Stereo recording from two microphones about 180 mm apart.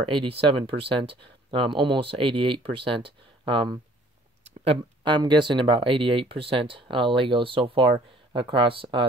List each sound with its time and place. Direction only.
0.0 s speech: 30° right (ahead or behind)